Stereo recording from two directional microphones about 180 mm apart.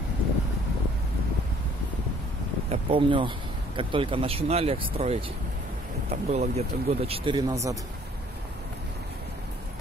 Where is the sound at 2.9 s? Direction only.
30° right (ahead or behind).